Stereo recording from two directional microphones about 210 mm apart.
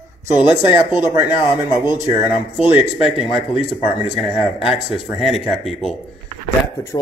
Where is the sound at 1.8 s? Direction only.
20° left (ahead or behind).